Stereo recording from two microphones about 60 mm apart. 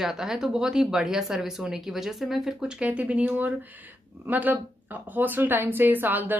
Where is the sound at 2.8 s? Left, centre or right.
Right.